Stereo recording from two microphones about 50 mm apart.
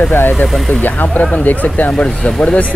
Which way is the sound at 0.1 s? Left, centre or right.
Left.